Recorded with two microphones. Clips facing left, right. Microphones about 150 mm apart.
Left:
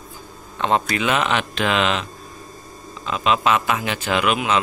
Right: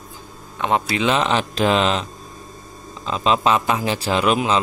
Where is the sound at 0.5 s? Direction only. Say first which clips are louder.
Even; 15° right (ahead or behind).